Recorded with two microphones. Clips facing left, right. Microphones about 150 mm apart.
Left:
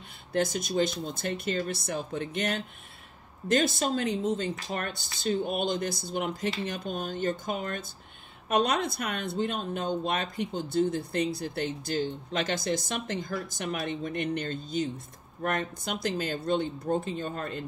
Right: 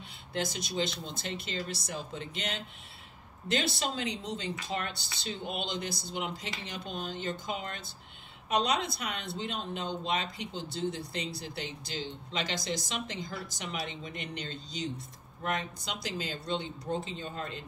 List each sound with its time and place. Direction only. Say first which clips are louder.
0.3 s speech: left 7 dB; 50° left (ahead or behind)